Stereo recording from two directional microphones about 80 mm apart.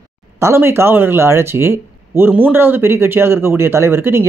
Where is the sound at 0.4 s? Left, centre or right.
Right.